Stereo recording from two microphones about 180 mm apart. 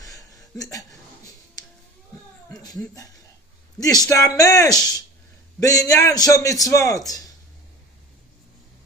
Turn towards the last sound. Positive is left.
turn(degrees=20)  # may be behind; listen again after turning